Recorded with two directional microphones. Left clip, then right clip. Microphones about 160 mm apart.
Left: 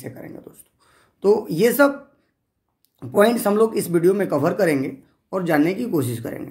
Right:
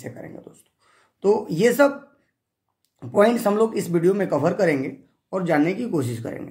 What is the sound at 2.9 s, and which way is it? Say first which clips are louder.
Speech: left 1 dB; 20° left (ahead or behind).